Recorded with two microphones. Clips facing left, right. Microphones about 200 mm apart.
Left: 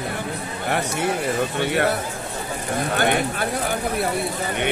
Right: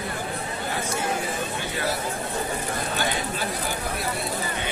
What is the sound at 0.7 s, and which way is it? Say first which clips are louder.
Speech: left 6 dB; 70° left (ahead or behind).